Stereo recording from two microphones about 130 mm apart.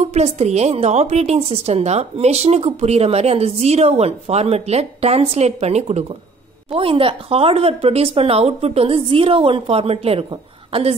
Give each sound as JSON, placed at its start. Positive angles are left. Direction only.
{"t": 0.0, "sound": "a woman's voice", "side_deg": -60}
{"t": 6.7, "sound": "speech", "side_deg": -45}